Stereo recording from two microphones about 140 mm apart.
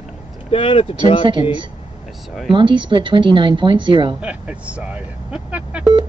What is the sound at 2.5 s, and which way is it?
Speech, 35° right (ahead or behind).